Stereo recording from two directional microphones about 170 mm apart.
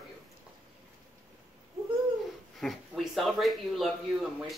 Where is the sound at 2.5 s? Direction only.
Centre (ahead or behind).